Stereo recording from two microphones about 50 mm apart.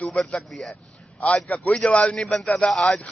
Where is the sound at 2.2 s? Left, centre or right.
Centre.